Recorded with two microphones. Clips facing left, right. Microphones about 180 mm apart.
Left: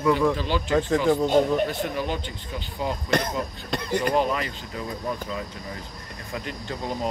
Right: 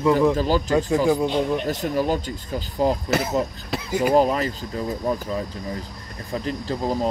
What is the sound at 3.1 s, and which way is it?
Speech, 5° right (ahead or behind).